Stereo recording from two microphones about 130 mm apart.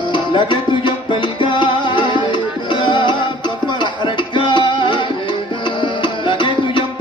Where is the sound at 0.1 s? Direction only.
40° left (ahead or behind).